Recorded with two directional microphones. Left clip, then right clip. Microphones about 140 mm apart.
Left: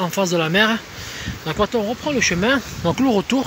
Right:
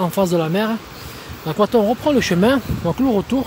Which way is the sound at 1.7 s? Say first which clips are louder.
Right 5 dB; 45° right (ahead or behind).